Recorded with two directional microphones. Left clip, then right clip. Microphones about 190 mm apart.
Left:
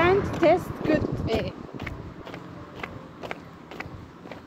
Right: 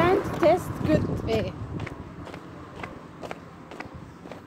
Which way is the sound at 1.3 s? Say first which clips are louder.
Right 2 dB; 5° right (ahead or behind).